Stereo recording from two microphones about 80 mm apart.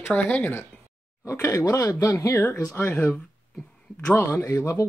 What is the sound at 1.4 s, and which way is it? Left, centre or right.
Speech, left.